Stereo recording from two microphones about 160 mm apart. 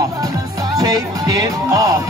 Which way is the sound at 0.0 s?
20° right (ahead or behind).